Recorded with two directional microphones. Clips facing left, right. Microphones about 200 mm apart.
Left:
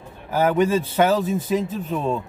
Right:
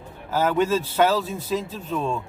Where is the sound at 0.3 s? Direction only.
15° left (ahead or behind).